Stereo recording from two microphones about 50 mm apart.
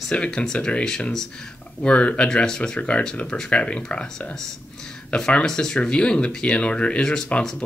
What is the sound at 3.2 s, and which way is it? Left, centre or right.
Speech, centre.